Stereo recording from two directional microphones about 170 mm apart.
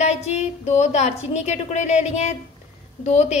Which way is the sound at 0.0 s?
40° left (ahead or behind).